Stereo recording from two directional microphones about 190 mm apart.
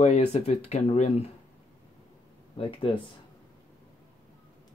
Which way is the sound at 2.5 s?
25° left (ahead or behind).